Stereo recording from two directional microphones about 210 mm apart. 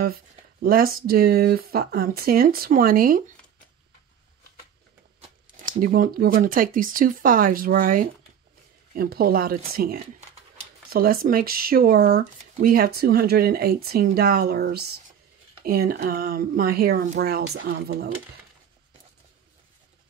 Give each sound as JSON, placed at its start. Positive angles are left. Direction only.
{"t": 0.0, "sound": "speech", "side_deg": -45}
{"t": 5.6, "sound": "speech", "side_deg": -40}